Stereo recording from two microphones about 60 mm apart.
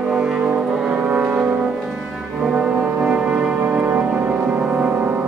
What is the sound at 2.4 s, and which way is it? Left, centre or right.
Music, centre.